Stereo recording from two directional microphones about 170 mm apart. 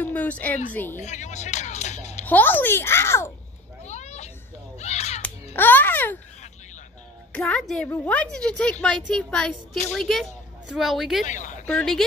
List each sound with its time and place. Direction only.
0.0 s a woman's voice: 10° left (ahead or behind)
1.0 s speech: 45° left (ahead or behind)
2.2 s a woman's voice: 10° left (ahead or behind)
3.8 s a sound: 40° left (ahead or behind)
5.2 s a sound: 10° left (ahead or behind)
7.3 s a woman's voice: 5° left (ahead or behind)
11.2 s speech: 45° left (ahead or behind)
11.6 s speech: 5° left (ahead or behind)